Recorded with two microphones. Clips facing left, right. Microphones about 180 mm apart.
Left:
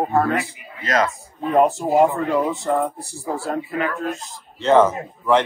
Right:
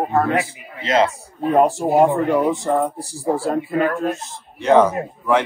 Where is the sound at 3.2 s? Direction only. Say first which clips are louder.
Right 5 dB; 35° right (ahead or behind).